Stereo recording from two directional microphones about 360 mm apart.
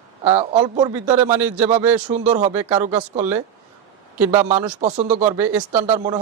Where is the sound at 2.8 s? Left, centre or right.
Centre.